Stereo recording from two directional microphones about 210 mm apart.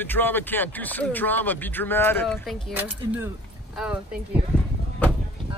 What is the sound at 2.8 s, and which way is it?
Speech, 10° right (ahead or behind).